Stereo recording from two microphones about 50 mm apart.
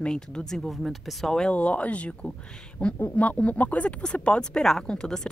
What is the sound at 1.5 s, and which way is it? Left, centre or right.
A woman's voice, left.